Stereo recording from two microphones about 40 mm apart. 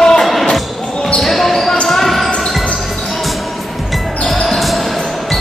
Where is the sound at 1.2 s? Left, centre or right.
Centre.